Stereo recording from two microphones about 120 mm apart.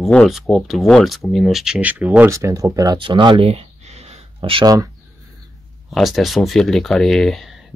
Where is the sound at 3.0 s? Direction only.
40° right (ahead or behind); by 4.2 s 65° right (ahead or behind).